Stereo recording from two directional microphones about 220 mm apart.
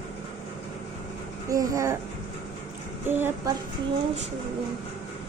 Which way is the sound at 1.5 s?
15° right (ahead or behind).